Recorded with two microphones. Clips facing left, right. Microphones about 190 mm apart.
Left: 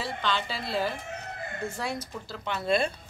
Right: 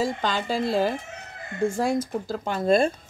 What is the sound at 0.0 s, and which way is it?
A woman's voice, 45° right (ahead or behind).